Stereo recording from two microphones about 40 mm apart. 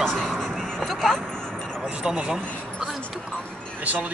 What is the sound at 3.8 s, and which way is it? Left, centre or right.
Speech, right.